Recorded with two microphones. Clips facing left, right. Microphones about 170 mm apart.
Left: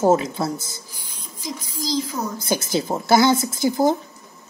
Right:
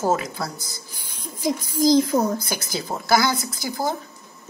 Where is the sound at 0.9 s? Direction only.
55° right (ahead or behind).